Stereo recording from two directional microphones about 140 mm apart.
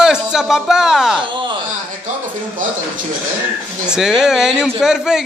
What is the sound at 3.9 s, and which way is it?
Speech, 5° right (ahead or behind).